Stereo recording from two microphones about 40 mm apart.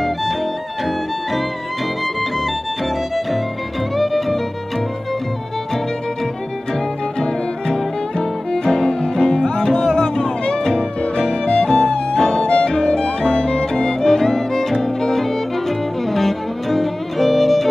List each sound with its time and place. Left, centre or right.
0.0 s music: centre
3.9 s music: centre
7.2 s music: centre
12.4 s music: left; by 17.6 s centre